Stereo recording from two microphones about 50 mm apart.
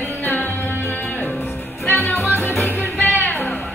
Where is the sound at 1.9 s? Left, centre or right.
Left.